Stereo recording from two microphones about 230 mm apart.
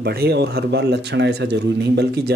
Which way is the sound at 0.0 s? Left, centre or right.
Right.